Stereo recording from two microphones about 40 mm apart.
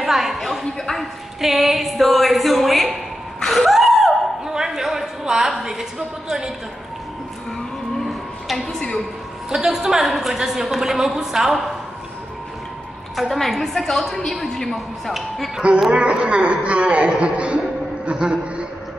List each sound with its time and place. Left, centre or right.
0.0 s a woman's voice: centre
0.7 s speech: centre
1.4 s a woman's voice: centre
3.3 s a sound: centre
5.5 s a woman's voice: centre
8.0 s a sound: centre
9.5 s a woman's voice: centre
13.1 s a woman's voice: centre
15.9 s speech: right
18.0 s a sound: right